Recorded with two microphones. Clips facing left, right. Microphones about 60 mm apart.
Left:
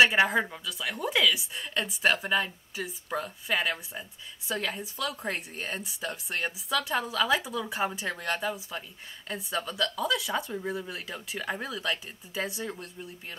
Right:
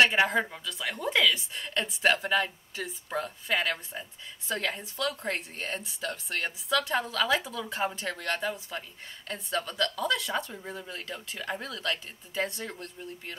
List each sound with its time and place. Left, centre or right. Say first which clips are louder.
0.0 s speech: left 1 dB; centre